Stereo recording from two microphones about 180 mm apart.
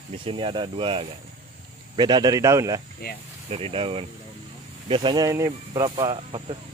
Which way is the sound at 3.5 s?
30° right (ahead or behind).